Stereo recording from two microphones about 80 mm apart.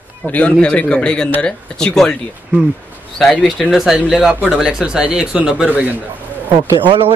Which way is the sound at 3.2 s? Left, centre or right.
Centre.